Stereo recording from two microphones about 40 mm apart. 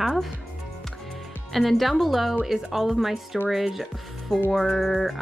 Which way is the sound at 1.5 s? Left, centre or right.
Centre.